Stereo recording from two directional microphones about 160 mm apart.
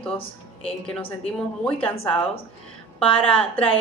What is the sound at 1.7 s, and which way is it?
Speech, 10° left (ahead or behind).